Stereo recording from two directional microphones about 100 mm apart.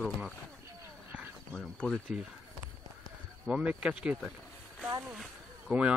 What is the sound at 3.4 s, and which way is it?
Speech, 10° right (ahead or behind).